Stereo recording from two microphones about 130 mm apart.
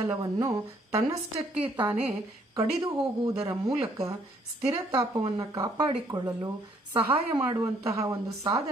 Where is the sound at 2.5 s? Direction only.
30° right (ahead or behind).